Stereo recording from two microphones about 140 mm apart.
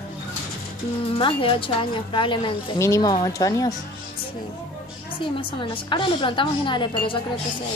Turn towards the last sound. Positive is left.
turn(degrees=35)  # may be behind; listen again after turning